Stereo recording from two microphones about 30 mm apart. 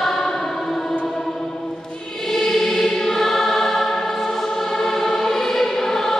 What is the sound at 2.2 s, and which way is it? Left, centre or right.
Choir, centre.